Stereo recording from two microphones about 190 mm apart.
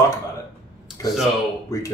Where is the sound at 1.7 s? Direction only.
15° left (ahead or behind).